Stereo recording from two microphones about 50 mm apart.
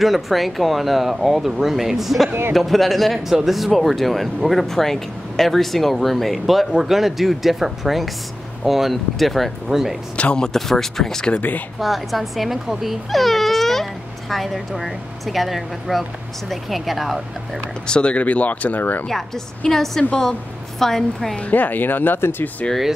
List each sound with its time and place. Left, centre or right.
0.0 s speech: centre
10.1 s speech: left
11.8 s speech: centre
17.8 s speech: left
19.0 s speech: centre
21.4 s speech: left